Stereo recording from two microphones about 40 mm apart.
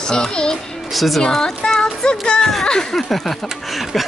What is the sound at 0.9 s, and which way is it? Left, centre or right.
Speech, centre.